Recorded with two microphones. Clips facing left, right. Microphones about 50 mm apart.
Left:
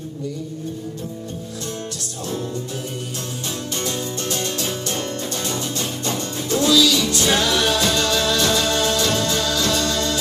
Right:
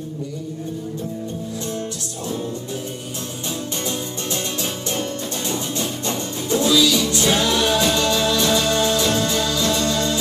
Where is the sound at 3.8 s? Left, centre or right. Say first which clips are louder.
Left 1 dB; right.